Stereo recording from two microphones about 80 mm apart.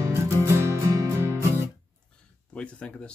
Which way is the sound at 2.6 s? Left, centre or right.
Centre.